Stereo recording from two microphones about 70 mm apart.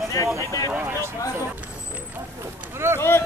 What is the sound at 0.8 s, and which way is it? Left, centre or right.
Speech, right.